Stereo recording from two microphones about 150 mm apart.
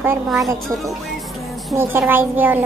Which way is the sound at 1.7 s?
15° right (ahead or behind).